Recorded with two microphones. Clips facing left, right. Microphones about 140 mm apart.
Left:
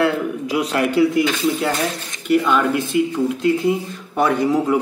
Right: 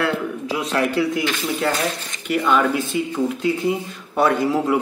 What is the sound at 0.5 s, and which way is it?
Speech, 15° left (ahead or behind).